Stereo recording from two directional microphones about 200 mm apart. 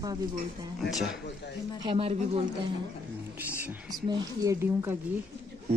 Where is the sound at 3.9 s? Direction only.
20° right (ahead or behind).